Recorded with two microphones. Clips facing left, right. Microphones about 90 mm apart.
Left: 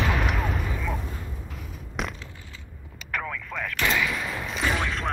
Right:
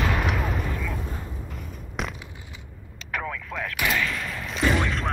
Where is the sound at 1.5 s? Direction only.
Centre (ahead or behind).